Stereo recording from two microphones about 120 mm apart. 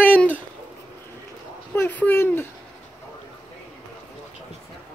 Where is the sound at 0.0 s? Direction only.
15° left (ahead or behind).